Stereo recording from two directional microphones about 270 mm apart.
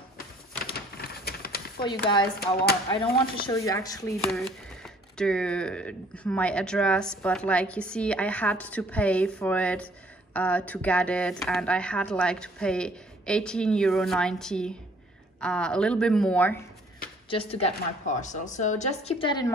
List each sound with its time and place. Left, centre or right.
0.7 s a sound: left
1.8 s speech: centre
3.3 s speech: centre
4.2 s speech: centre
17.3 s a woman's voice: left